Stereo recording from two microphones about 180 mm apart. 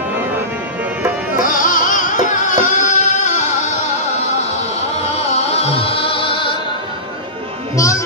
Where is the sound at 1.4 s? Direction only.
50° left (ahead or behind); by 6.6 s 30° left (ahead or behind).